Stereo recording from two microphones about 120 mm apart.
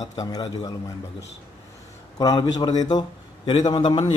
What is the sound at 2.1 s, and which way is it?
A man's voice, 35° left (ahead or behind).